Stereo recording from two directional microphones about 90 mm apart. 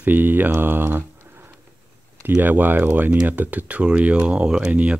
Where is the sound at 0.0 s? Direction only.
20° right (ahead or behind).